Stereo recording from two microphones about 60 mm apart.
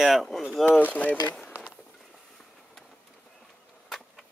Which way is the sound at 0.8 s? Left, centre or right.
Left.